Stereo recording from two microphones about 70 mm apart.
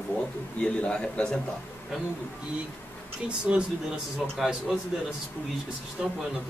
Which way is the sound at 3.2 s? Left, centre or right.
Centre.